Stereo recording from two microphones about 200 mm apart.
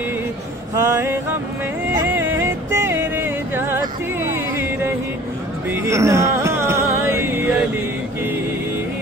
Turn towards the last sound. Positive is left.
turn(degrees=-10)  # may be behind; listen again after turning